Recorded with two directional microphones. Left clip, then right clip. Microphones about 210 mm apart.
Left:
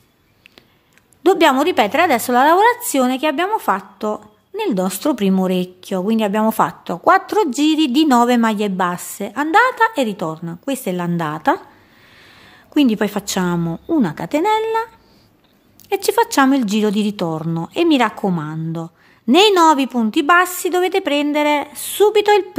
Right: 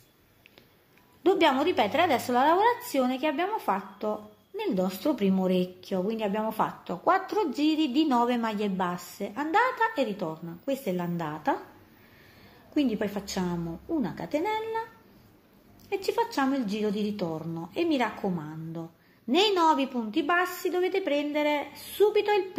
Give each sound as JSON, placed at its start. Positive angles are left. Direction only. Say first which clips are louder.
{"t": 1.2, "sound": "a woman's voice", "louder": "left 10 dB", "side_deg": 40}
{"t": 12.7, "sound": "a woman's voice", "louder": "left 12 dB", "side_deg": 40}
{"t": 15.9, "sound": "a woman's voice", "louder": "left 12 dB", "side_deg": 45}